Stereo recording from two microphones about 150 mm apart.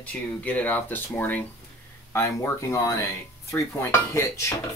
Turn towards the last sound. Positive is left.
turn(degrees=20)  # may be behind; listen again after turning